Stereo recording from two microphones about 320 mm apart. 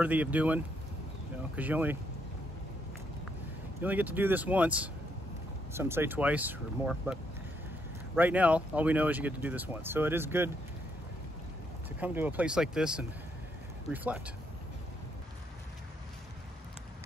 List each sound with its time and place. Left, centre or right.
0.0 s speech: centre
3.8 s speech: centre
8.2 s speech: centre
12.0 s speech: centre